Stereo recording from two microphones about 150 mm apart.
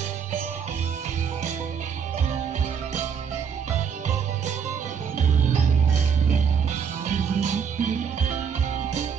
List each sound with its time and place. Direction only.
7.1 s music: 50° right (ahead or behind)